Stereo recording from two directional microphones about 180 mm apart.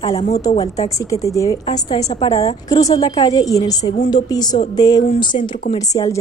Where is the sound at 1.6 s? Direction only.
35° left (ahead or behind).